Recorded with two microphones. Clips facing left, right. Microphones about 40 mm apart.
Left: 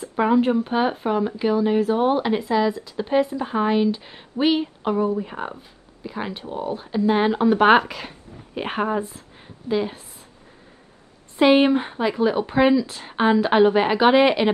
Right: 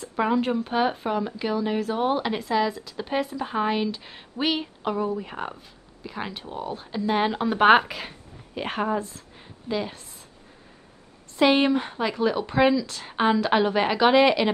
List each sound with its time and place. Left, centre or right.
0.1 s speech: centre
3.4 s speech: centre
8.5 s a woman's voice: centre
11.3 s a woman's voice: left
13.1 s a woman's voice: centre